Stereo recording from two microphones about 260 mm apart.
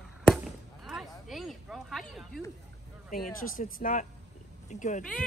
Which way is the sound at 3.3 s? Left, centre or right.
Left.